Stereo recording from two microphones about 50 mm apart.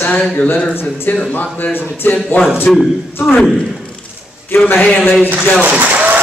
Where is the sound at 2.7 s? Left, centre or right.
Centre.